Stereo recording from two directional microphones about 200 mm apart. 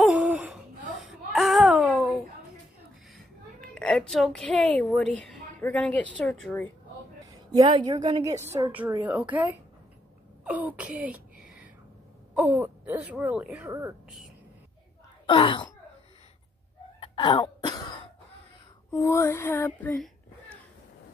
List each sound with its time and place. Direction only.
0.0 s a sound: 5° right (ahead or behind)
1.0 s child singing: centre (ahead or behind)
3.6 s a woman's voice: 5° left (ahead or behind)
7.2 s a woman's voice: 20° right (ahead or behind)
10.4 s a sound: 10° right (ahead or behind)
12.4 s speech: 10° right (ahead or behind)
15.2 s throat clearing: 25° left (ahead or behind)
17.0 s cough: 25° left (ahead or behind)
18.9 s speech: 15° left (ahead or behind)